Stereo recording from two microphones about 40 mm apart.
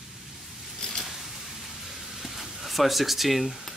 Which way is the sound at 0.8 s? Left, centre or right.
Centre.